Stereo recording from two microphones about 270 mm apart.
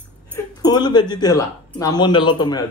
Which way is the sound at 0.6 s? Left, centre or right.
Centre.